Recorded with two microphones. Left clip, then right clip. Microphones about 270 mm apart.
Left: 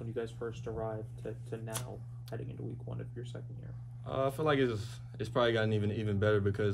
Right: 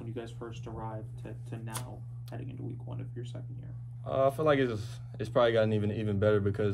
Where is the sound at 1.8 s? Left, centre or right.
Centre.